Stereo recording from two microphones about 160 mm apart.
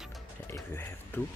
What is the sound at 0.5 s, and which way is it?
Speech, 15° left (ahead or behind).